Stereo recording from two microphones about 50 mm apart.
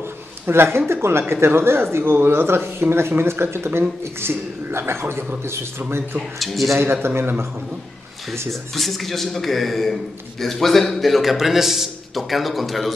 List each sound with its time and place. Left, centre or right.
0.5 s a woman's voice: right
6.4 s a man's voice: centre
6.7 s a woman's voice: right
8.5 s a man's voice: centre